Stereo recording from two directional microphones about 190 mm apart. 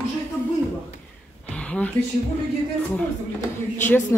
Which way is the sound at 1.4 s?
5° left (ahead or behind).